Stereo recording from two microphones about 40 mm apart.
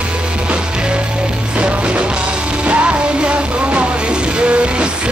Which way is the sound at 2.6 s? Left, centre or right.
Right.